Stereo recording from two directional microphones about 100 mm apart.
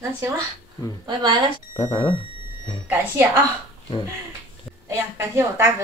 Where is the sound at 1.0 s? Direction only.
45° right (ahead or behind).